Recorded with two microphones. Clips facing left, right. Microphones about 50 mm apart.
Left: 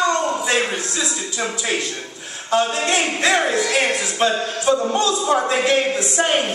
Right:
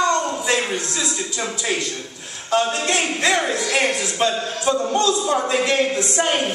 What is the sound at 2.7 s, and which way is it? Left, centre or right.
A man's voice, centre.